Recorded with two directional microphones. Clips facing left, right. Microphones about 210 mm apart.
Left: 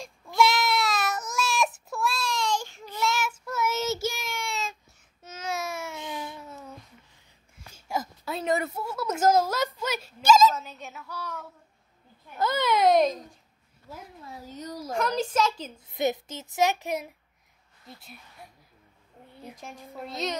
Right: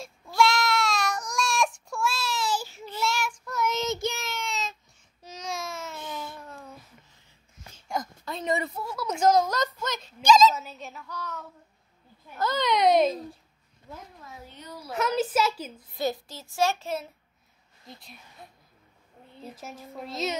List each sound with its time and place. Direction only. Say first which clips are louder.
0.4 s baby cry: even; centre (ahead or behind)
3.0 s child singing: left 1 dB; centre (ahead or behind)
5.2 s baby cry: left 2 dB; 5° left (ahead or behind)
6.0 s a sound: left 1 dB; 10° left (ahead or behind)
7.7 s a sound: left 1 dB; 5° left (ahead or behind)
10.5 s speech: even; 5° right (ahead or behind)
14.2 s speech: left 6 dB; 40° left (ahead or behind)
15.0 s a child's voice: right 1 dB; 5° right (ahead or behind)
15.9 s a child's voice: left 3 dB; 20° left (ahead or behind)
17.9 s speech: right 1 dB; centre (ahead or behind)
19.3 s a sound: right 2 dB; 10° left (ahead or behind)
19.6 s speech: even; centre (ahead or behind)